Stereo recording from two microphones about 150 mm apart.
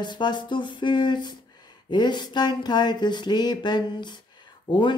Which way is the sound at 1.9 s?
30° left (ahead or behind).